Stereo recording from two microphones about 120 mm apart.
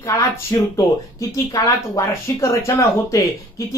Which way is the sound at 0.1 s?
30° left (ahead or behind).